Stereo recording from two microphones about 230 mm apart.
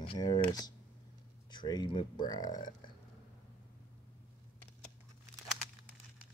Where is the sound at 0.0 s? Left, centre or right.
Centre.